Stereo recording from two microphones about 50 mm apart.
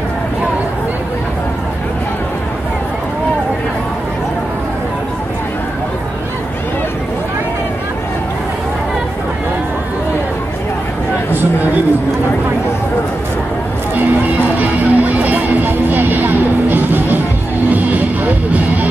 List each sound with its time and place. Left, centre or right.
14.6 s music: right